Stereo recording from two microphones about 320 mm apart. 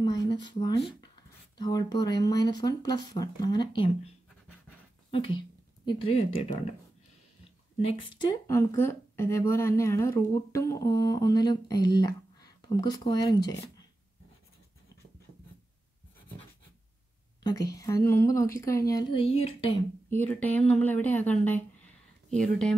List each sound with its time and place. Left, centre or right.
0.0 s a woman's voice: centre
5.1 s a woman's voice: centre
7.8 s a woman's voice: centre
17.4 s a woman's voice: centre
20.1 s speech: centre